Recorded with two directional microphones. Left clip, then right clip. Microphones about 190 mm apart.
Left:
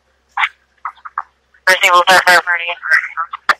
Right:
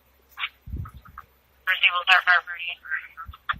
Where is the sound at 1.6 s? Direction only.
45° left (ahead or behind).